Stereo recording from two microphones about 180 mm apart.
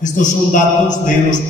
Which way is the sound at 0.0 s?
45° left (ahead or behind).